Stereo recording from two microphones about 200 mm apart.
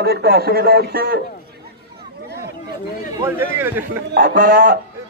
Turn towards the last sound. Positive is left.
turn(degrees=-45)  # may be behind; listen again after turning